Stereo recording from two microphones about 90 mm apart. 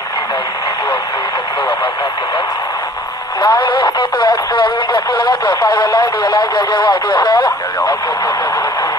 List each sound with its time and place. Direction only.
3.3 s speech: 60° left (ahead or behind)